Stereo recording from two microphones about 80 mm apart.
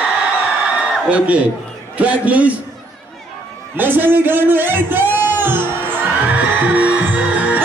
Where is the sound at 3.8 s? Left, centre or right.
Right.